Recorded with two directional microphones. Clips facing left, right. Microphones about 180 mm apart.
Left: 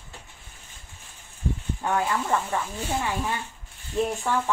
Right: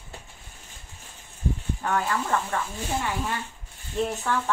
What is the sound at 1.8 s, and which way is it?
Speech, 15° left (ahead or behind).